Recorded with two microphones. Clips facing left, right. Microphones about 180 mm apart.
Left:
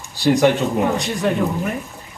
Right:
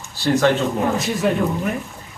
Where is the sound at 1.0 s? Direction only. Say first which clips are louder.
Even; 5° right (ahead or behind).